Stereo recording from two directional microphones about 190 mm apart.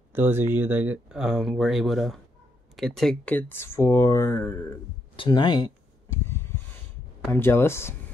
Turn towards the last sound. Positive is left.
turn(degrees=15)  # may be behind; listen again after turning